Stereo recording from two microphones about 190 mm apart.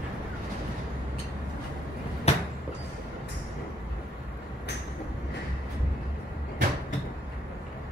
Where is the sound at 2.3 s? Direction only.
35° left (ahead or behind).